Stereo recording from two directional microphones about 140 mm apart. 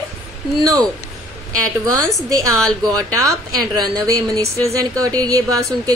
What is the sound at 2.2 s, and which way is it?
A woman's voice, 25° right (ahead or behind).